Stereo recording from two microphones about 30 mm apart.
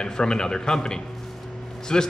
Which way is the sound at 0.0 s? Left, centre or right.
Left.